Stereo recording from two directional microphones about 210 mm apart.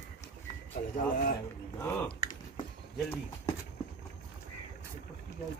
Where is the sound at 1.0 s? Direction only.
45° left (ahead or behind).